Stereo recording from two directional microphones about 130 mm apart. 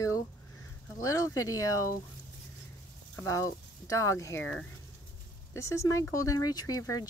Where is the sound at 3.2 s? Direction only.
25° left (ahead or behind).